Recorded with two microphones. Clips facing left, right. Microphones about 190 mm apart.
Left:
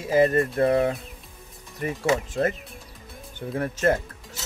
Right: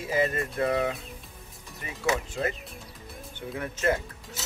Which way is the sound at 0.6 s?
40° left (ahead or behind).